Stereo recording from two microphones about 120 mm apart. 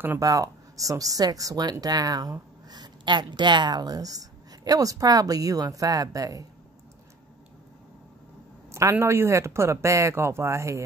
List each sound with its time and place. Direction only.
0.2 s speech: 30° right (ahead or behind)
8.9 s speech: 20° right (ahead or behind)